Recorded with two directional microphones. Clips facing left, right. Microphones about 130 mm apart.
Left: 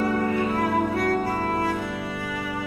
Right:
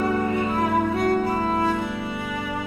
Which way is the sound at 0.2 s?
20° right (ahead or behind).